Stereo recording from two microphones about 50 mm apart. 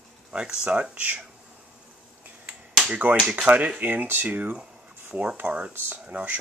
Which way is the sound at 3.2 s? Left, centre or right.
Right.